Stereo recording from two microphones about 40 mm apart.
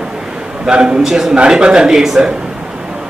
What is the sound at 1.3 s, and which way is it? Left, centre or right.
Speech, right.